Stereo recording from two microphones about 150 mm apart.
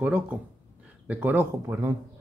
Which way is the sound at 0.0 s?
10° right (ahead or behind).